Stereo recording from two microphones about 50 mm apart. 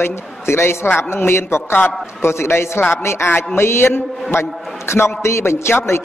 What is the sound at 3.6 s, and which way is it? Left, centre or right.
A woman's voice, left.